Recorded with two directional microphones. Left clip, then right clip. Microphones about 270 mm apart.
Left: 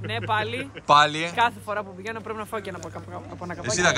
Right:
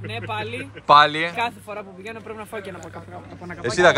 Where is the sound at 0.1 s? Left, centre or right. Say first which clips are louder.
Left 3 dB; centre.